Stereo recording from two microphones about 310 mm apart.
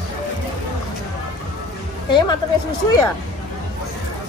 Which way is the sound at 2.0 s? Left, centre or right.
Centre.